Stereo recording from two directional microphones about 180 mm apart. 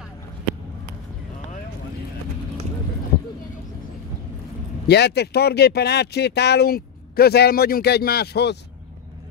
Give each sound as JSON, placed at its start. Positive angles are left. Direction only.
{"t": 4.8, "sound": "speech", "side_deg": 65}